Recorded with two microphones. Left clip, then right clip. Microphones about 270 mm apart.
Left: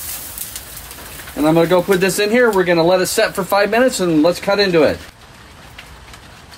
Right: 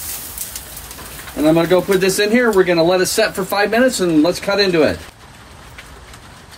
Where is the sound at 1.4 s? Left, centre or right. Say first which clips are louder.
Even; centre.